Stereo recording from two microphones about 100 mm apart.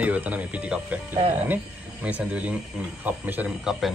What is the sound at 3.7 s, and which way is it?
Speech, 5° right (ahead or behind).